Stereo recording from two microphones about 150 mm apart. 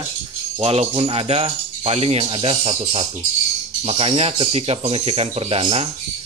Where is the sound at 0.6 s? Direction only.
40° right (ahead or behind).